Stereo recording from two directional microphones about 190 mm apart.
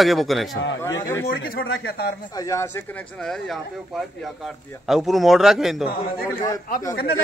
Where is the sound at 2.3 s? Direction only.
15° left (ahead or behind).